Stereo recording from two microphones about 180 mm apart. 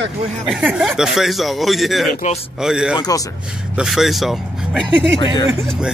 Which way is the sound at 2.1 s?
40° left (ahead or behind).